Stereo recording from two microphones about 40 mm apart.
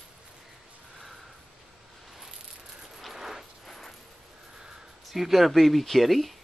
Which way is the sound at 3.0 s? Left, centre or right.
Centre.